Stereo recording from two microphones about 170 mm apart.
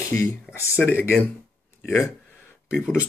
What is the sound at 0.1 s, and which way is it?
Speech, 15° left (ahead or behind).